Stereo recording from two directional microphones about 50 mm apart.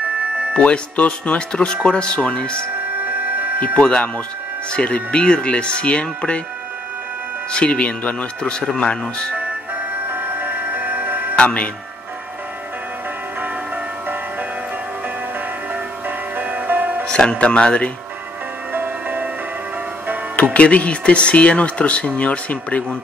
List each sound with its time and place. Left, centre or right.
0.6 s speech: left
3.6 s speech: centre
7.5 s speech: left
9.8 s music: right
11.3 s speech: left
16.1 s music: right
17.0 s speech: centre
18.7 s music: right
20.5 s speech: left